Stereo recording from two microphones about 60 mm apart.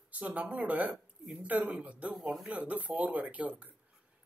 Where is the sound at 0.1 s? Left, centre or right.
Right.